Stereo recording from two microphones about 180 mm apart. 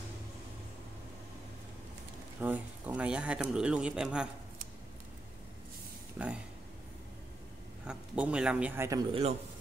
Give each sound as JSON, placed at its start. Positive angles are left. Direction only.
{"t": 2.4, "sound": "speech", "side_deg": -10}
{"t": 6.1, "sound": "speech", "side_deg": -5}
{"t": 7.8, "sound": "a man's voice", "side_deg": -5}